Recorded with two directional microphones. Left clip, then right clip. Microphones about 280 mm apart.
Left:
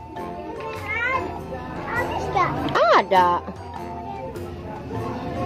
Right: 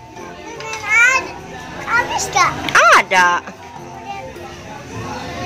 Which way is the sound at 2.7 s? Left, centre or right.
Centre.